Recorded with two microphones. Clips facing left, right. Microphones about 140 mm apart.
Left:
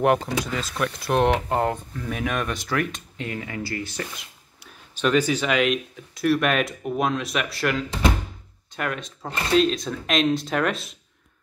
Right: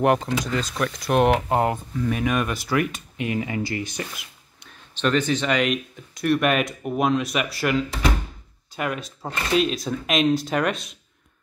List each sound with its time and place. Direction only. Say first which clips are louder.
0.0 s speech: even; centre (ahead or behind)
3.3 s speech: right 5 dB; 20° right (ahead or behind)
4.6 s speech: even; 10° left (ahead or behind)